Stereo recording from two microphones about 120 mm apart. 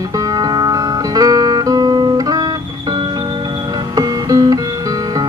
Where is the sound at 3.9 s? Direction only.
30° right (ahead or behind).